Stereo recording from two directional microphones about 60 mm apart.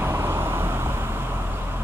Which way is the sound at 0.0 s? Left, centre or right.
Right.